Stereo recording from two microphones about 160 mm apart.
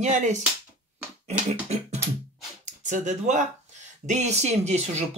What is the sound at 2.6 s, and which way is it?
Speech, 50° right (ahead or behind).